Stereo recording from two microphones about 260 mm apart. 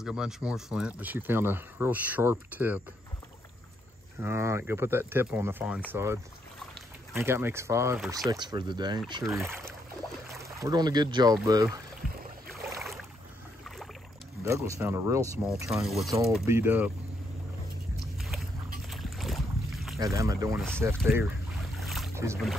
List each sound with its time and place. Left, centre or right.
0.0 s speech: centre
4.2 s speech: centre
7.2 s speech: centre
8.3 s speech: centre
14.4 s speech: centre
18.8 s boat: centre
20.0 s speech: centre
20.8 s boat: centre
22.1 s rowboat: centre